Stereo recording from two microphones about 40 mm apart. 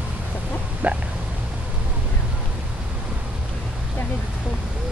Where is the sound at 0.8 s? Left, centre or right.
Right.